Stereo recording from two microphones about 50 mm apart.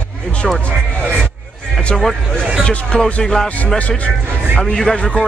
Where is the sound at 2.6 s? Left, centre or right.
Centre.